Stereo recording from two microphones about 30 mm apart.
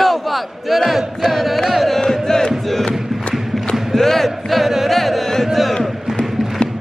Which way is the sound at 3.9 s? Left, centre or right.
Centre.